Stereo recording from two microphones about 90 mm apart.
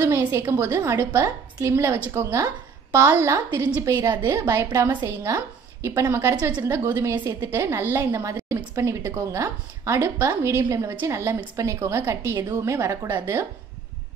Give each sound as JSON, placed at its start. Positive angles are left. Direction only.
{"t": 0.0, "sound": "a woman's voice", "side_deg": -25}
{"t": 12.4, "sound": "a woman's voice", "side_deg": -45}